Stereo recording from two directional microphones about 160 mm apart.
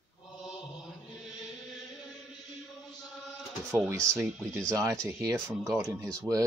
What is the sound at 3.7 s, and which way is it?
Speech, 15° right (ahead or behind).